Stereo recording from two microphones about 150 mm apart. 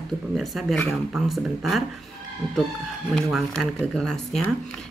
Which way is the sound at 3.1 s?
Centre (ahead or behind).